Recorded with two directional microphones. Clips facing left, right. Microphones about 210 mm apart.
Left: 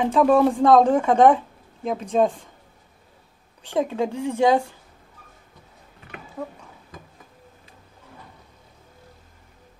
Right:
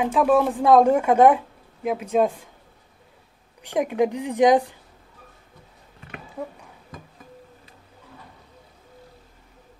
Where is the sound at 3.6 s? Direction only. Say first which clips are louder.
Right 2 dB; 15° right (ahead or behind).